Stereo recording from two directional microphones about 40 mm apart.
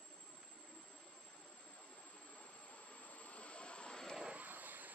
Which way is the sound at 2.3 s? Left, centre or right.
Left.